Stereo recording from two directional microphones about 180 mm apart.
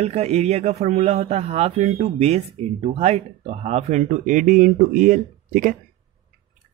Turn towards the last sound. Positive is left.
turn(degrees=-45)  # may be behind; listen again after turning